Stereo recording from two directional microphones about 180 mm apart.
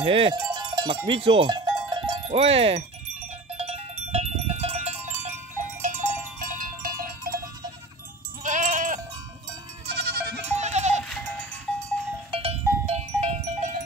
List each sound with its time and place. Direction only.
0.0 s cowbell: 30° right (ahead or behind); by 7.3 s 55° right (ahead or behind)
8.5 s sheep: 45° right (ahead or behind)
9.9 s music: 60° right (ahead or behind)
10.5 s goat: 40° right (ahead or behind)
11.1 s cowbell: 5° left (ahead or behind)
12.3 s livestock: 35° right (ahead or behind)